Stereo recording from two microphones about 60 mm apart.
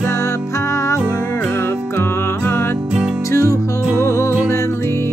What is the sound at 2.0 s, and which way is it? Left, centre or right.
Music, left.